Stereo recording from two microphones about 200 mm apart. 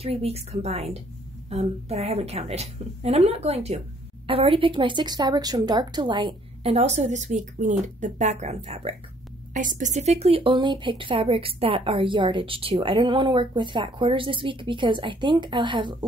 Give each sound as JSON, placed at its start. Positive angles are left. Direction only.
{"t": 0.0, "sound": "a woman's voice", "side_deg": -30}